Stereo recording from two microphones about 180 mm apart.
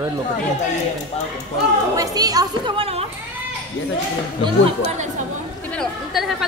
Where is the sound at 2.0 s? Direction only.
20° right (ahead or behind).